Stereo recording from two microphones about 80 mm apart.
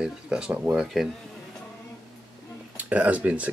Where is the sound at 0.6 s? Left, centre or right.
Centre.